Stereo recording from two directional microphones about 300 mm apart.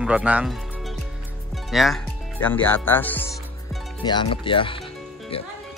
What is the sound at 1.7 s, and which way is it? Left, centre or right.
Speech, centre.